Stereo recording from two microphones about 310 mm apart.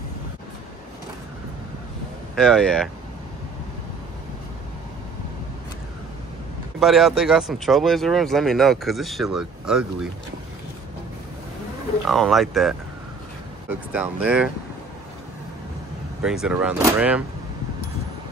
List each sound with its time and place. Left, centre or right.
2.3 s speech: centre
6.8 s speech: centre
12.1 s speech: centre
16.2 s speech: centre